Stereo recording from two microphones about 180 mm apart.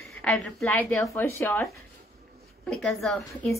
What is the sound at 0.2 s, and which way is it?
A woman's voice, 5° left (ahead or behind).